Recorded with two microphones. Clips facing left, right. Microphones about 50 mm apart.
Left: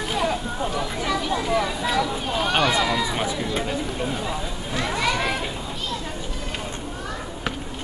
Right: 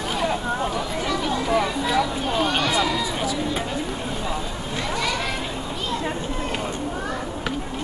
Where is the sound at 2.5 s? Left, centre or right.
Centre.